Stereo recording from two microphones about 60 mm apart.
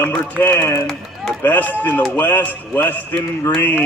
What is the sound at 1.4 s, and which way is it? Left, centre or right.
Speech, left.